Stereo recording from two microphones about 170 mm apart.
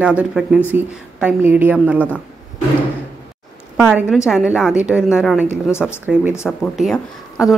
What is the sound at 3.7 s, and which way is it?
A woman's voice, 5° right (ahead or behind).